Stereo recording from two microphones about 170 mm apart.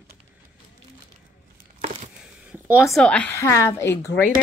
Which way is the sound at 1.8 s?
45° right (ahead or behind).